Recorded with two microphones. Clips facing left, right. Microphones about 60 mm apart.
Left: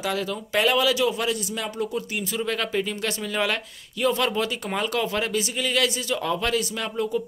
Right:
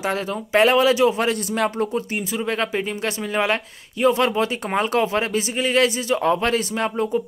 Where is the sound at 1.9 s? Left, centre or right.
Right.